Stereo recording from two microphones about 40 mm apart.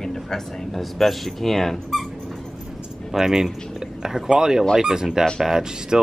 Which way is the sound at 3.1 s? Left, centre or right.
Centre.